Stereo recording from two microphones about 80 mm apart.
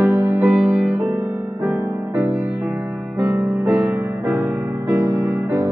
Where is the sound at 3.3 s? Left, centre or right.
Right.